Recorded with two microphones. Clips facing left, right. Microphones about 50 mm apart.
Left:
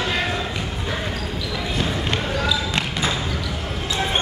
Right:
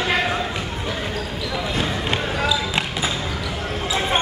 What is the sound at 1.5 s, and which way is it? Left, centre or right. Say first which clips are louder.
Basketball bounce: right 1 dB; centre.